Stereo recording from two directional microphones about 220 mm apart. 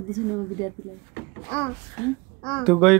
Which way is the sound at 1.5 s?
5° left (ahead or behind).